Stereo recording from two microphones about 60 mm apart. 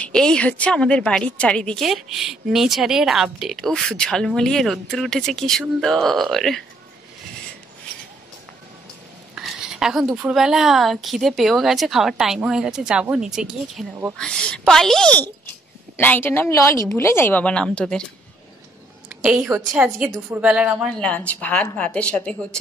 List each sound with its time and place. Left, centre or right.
0.1 s a woman's voice: centre
1.8 s a woman's voice: centre
3.5 s a woman's voice: centre
9.3 s a sound: centre
9.6 s a woman's voice: centre
14.1 s a woman's voice: centre
16.0 s a woman's voice: left
16.5 s a woman's voice: left
17.3 s a woman's voice: left
19.5 s a woman's voice: right
20.2 s speech: right
20.9 s a woman's voice: left